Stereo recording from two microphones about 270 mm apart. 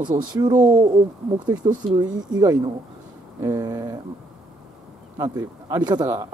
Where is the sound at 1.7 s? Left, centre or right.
Centre.